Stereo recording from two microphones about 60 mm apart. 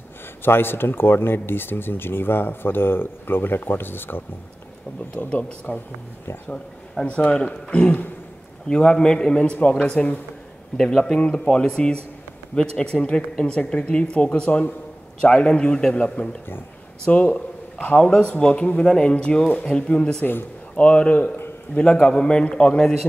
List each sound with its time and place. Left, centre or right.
0.4 s speech: left
5.1 s a man's voice: left
9.6 s speech: left
10.8 s speech: centre